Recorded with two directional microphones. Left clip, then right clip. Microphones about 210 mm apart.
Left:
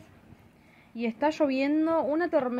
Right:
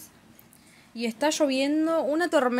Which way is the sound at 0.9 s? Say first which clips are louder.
Right 2 dB; 10° right (ahead or behind).